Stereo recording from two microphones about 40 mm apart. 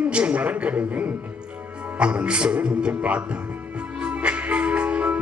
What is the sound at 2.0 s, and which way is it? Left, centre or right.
Speech, right.